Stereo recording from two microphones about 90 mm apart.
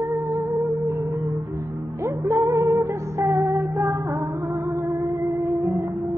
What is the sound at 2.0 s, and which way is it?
Music, 35° right (ahead or behind).